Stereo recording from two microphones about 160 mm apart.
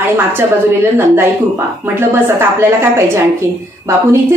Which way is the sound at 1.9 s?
15° right (ahead or behind).